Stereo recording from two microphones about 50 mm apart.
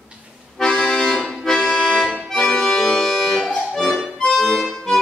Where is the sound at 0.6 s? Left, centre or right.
Centre.